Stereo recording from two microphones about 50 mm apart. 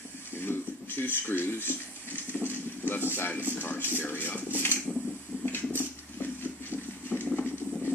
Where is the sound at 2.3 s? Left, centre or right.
Left.